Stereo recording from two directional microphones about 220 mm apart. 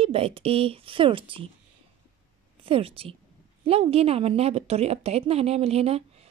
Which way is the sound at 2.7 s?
25° right (ahead or behind).